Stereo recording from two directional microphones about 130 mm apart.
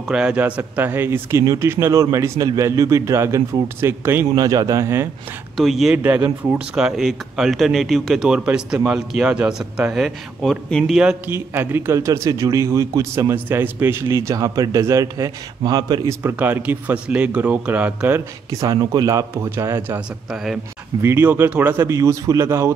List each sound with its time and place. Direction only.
0.1 s speech: 10° right (ahead or behind)
4.4 s speech: 30° right (ahead or behind)
5.6 s speech: centre (ahead or behind)
6.0 s speech: 15° right (ahead or behind); by 11.0 s centre (ahead or behind)
11.2 s speech: 15° right (ahead or behind)
16.2 s speech: 15° right (ahead or behind)
18.5 s speech: 25° right (ahead or behind)
21.0 s speech: 20° right (ahead or behind)